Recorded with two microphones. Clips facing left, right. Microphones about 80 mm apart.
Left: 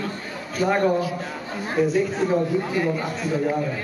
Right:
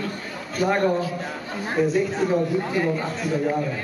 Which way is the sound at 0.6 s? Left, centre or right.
Centre.